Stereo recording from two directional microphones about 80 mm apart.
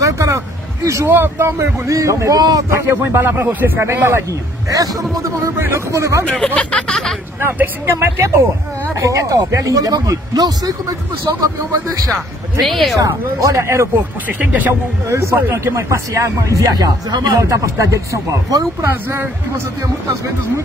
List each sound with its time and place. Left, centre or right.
0.0 s a sound: right
0.8 s speech: right
3.0 s speech: right
4.6 s speech: right
5.6 s speech: right
6.3 s speech: centre
7.3 s speech: right
12.6 s speech: centre
13.0 s speech: right
14.2 s speech: right
14.7 s speech: right
16.7 s speech: right